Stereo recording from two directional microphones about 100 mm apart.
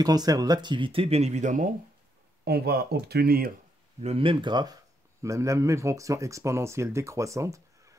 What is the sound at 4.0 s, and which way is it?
Speech, 80° right.